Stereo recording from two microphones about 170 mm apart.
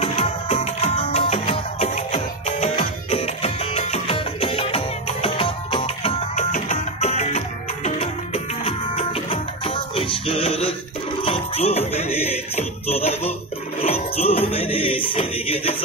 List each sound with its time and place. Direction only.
0.0 s music: 40° left (ahead or behind)